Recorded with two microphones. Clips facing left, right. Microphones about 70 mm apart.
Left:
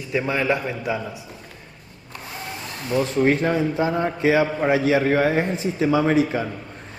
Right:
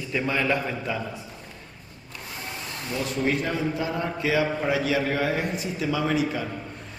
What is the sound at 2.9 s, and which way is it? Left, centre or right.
A man's voice, left.